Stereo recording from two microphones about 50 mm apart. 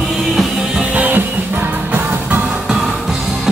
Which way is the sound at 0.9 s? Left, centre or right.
Right.